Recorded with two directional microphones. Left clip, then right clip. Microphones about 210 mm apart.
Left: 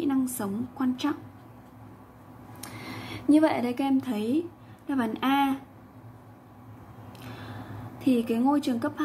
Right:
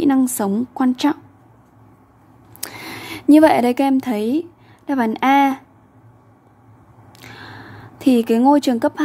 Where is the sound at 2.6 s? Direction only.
50° right (ahead or behind).